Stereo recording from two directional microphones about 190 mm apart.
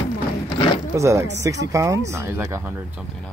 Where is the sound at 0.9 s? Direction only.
15° right (ahead or behind).